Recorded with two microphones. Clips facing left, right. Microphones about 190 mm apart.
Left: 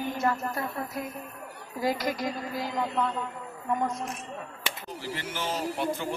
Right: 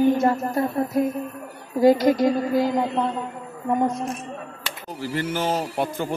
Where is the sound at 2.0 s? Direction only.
25° right (ahead or behind).